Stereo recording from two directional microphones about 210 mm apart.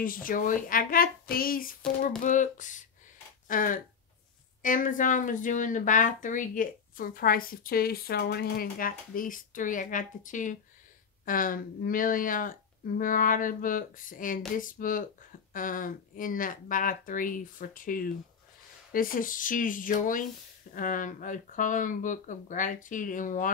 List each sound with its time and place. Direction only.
0.0 s speech: 40° left (ahead or behind)